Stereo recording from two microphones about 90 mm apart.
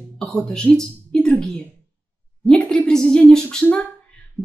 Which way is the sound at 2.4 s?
10° left (ahead or behind).